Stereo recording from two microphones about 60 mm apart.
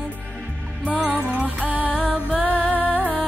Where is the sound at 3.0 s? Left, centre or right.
Left.